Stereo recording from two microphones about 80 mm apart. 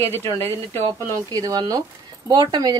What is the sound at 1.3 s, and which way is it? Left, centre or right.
Speech, right.